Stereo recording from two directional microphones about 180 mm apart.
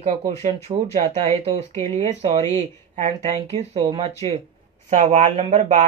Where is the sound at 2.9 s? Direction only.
40° right (ahead or behind).